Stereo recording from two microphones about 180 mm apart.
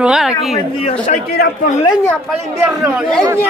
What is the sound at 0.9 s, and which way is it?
Speech, 40° left (ahead or behind).